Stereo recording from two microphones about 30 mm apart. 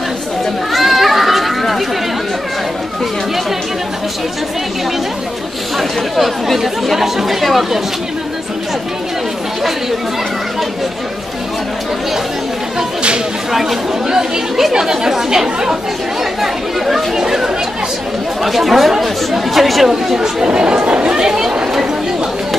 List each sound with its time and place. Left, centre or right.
0.7 s children playing: centre
5.8 s speech: centre
13.5 s speech: centre
16.3 s speech: centre
17.2 s speech: centre
18.4 s speech: centre
20.5 s speech: right